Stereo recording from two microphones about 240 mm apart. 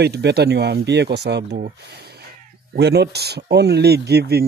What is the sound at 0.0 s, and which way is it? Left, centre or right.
A man's voice, right.